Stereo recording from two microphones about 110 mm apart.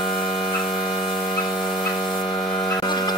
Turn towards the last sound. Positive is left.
turn(degrees=40)  # may be behind; listen again after turning